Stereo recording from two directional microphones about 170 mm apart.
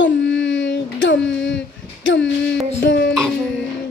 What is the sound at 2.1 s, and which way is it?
Music, 90° left.